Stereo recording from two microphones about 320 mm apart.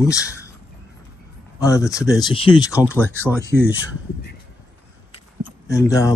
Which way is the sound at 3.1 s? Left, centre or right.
Centre.